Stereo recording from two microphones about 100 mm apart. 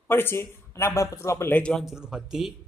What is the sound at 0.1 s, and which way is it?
Speech, 25° left (ahead or behind).